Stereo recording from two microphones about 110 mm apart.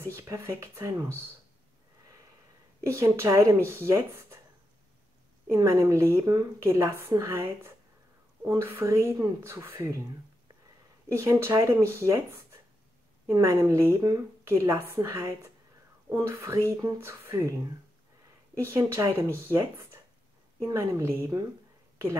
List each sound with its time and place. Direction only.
0.1 s a woman's voice: 25° right (ahead or behind)
2.9 s a woman's voice: 25° right (ahead or behind)
5.5 s a woman's voice: 25° right (ahead or behind)
11.1 s a woman's voice: 25° right (ahead or behind)
18.6 s a woman's voice: 30° right (ahead or behind)